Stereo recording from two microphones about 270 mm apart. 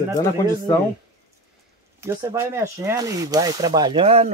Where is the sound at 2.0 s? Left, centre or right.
Centre.